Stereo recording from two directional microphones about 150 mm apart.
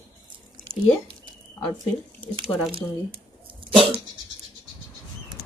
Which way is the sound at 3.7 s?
40° right (ahead or behind).